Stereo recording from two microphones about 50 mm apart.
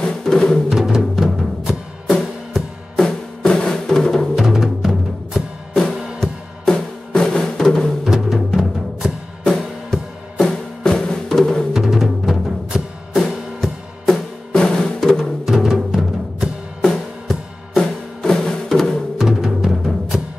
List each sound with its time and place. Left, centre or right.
0.0 s music: centre
0.7 s music: centre
3.0 s drum: centre
4.4 s music: centre
6.7 s music: centre
8.0 s music: centre
9.6 s music: centre
11.7 s music: centre
14.1 s drum: centre
15.4 s music: centre
16.8 s music: centre
19.1 s music: centre